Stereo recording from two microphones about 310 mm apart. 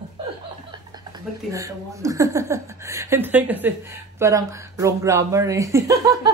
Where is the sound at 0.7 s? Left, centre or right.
Centre.